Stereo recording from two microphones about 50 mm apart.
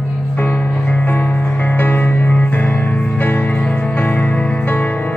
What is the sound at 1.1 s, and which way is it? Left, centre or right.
Music, left.